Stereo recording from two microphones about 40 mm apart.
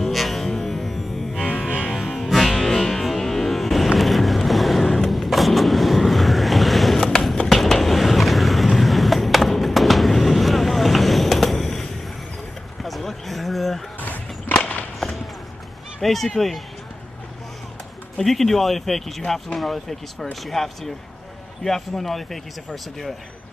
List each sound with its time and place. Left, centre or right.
0.0 s music: centre
2.4 s music: centre
7.4 s vehicle: centre
12.8 s a sound: centre
13.9 s vehicle: left
16.0 s speech: centre
18.1 s speech: centre